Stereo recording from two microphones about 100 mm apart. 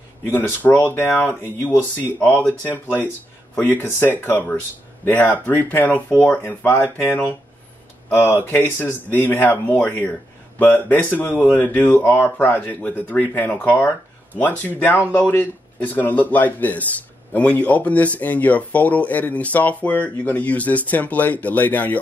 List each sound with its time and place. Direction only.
0.3 s speech: 20° left (ahead or behind)